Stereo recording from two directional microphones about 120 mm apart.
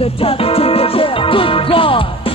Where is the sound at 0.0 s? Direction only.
50° left (ahead or behind).